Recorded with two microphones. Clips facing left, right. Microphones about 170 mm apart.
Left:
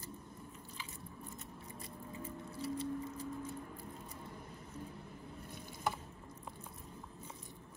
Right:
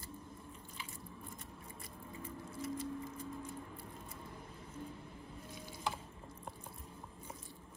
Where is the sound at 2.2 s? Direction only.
30° left (ahead or behind).